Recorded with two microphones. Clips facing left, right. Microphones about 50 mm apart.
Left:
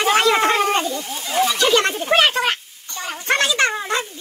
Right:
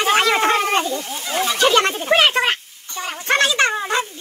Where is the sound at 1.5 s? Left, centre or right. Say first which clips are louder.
Right 5 dB; right.